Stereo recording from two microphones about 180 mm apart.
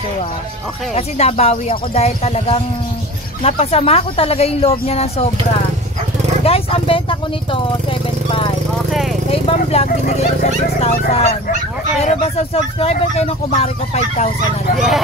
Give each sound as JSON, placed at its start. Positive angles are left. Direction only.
{"t": 0.9, "sound": "speech", "side_deg": 35}
{"t": 6.4, "sound": "speech", "side_deg": 30}
{"t": 9.3, "sound": "speech", "side_deg": 35}